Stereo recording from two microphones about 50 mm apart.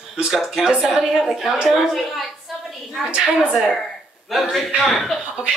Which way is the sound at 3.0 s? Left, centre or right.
Right.